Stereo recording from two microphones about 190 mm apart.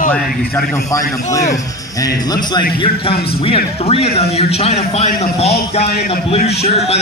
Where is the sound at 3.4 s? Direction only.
30° left (ahead or behind).